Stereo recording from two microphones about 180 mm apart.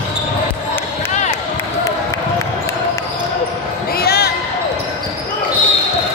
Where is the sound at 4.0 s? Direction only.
60° left (ahead or behind).